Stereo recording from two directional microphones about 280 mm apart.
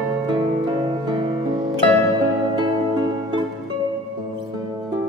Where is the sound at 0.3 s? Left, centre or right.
Centre.